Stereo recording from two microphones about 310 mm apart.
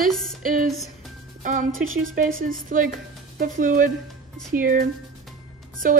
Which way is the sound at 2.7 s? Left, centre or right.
Right.